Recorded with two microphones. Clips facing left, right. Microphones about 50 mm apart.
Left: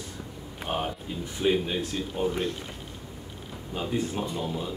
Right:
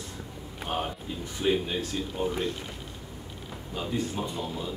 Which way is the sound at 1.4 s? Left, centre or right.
Centre.